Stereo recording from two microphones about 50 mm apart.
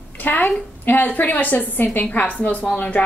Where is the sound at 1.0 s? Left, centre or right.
Left.